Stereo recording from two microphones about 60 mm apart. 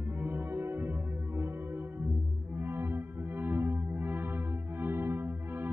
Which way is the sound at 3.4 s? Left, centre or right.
Right.